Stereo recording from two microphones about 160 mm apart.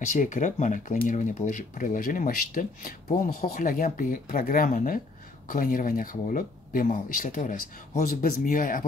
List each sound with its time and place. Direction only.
0.1 s speech: 50° left (ahead or behind)